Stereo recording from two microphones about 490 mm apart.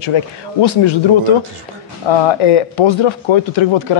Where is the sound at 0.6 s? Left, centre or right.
Left.